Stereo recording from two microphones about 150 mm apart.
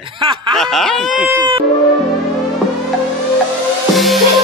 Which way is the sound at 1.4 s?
35° right (ahead or behind).